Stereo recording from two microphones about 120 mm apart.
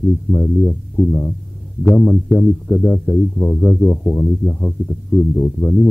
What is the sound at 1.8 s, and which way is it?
Speech, 25° left (ahead or behind).